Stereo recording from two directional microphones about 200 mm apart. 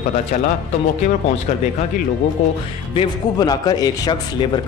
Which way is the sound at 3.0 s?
20° left (ahead or behind).